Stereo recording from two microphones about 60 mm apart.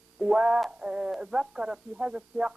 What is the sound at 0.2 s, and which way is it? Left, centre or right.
Speech, centre.